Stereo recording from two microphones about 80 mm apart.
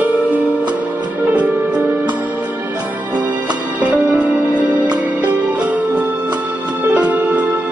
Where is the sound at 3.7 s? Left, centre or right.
Centre.